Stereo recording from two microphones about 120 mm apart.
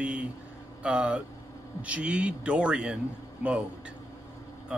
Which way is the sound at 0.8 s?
10° right (ahead or behind).